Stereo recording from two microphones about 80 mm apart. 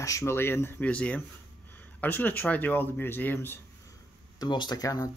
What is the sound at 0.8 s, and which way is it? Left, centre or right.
Speech, centre.